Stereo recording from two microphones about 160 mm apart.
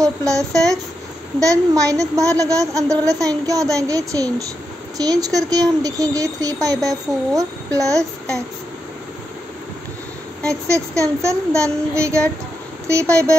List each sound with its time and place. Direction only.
0.3 s speech: centre (ahead or behind)
1.4 s speech: 20° right (ahead or behind)
10.4 s speech: 20° right (ahead or behind)